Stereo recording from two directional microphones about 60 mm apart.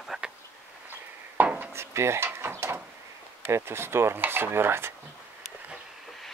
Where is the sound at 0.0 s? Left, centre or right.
Centre.